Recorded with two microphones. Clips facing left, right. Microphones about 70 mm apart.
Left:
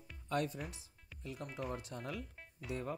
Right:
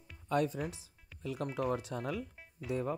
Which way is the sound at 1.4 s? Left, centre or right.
Right.